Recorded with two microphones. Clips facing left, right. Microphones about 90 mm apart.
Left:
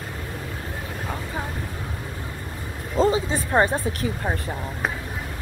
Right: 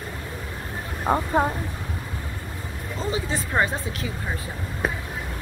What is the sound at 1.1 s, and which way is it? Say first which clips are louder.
Speech: right 12 dB; 50° right (ahead or behind).